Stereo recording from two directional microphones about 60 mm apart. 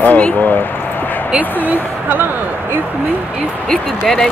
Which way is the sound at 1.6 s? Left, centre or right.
Right.